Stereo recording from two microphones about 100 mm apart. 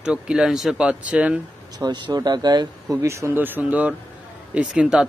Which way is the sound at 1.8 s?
45° right (ahead or behind).